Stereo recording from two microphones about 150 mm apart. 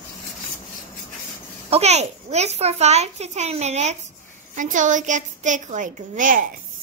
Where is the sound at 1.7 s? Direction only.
45° right (ahead or behind).